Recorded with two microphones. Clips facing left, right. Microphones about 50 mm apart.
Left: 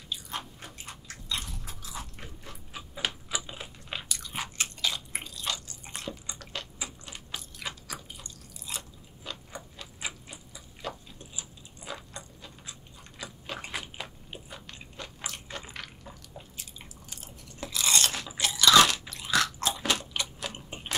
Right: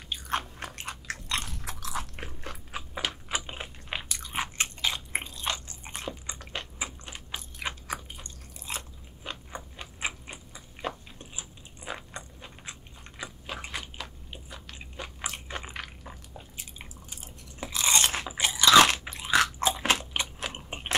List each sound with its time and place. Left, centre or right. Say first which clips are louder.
0.1 s biting: right 6 dB; right
2.2 s biting: right 5 dB; right
3.3 s biting: right 2 dB; right
13.5 s biting: left 1 dB; centre
15.0 s a sound: right 3 dB; centre
17.6 s crunch: right 1 dB; right
18.9 s biting: right 3 dB; right